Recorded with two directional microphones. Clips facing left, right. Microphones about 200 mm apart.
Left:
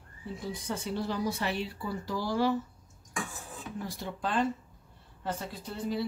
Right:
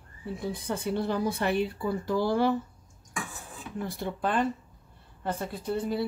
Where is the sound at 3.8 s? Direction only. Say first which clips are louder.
Right 5 dB; 55° right (ahead or behind).